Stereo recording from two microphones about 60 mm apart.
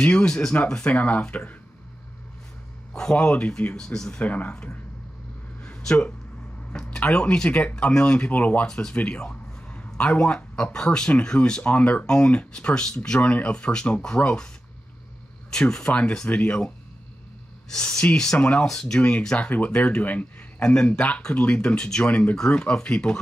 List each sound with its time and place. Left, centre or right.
0.0 s speech: centre
0.9 s speech: left
2.9 s speech: centre
3.7 s speech: centre
4.2 s speech: left
5.6 s a sound: centre
6.7 s speech: centre
15.5 s speech: centre
18.9 s speech: left
20.6 s speech: centre
22.1 s speech: left